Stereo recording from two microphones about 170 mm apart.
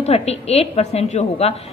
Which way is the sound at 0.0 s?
40° left (ahead or behind).